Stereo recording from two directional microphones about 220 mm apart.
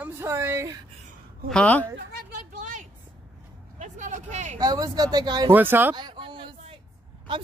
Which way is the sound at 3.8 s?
30° right (ahead or behind).